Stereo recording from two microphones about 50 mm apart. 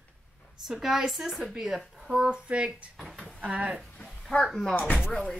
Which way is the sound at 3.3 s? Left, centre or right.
Right.